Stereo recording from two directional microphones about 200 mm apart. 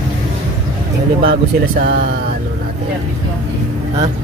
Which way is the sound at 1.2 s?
50° right (ahead or behind).